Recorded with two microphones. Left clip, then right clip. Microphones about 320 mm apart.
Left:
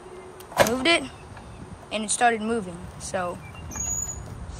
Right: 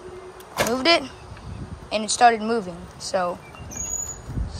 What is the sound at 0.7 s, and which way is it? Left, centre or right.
A woman's voice, centre.